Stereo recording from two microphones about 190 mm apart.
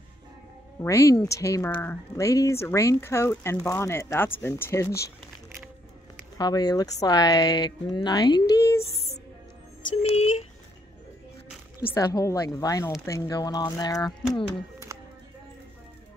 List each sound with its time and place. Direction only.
0.7 s speech: 15° left (ahead or behind)
6.3 s speech: 20° left (ahead or behind)
10.0 s a sound: 30° left (ahead or behind)
11.8 s speech: 15° left (ahead or behind)